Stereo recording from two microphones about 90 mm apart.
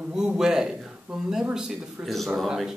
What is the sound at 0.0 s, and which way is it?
Speech, 10° right (ahead or behind).